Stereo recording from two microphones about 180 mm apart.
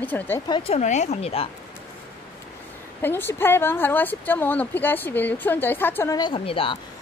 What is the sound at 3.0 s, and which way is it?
Speech, 10° left (ahead or behind).